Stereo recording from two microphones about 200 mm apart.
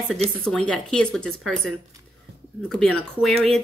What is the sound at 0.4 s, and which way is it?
Speech, 5° left (ahead or behind).